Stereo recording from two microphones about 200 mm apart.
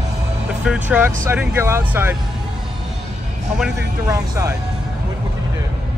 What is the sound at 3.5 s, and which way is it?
Speech, 5° right (ahead or behind).